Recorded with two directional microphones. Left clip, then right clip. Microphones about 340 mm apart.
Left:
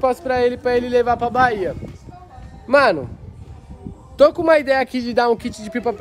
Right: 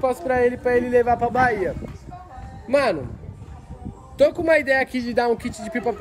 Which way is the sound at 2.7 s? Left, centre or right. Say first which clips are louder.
Left 6 dB; centre.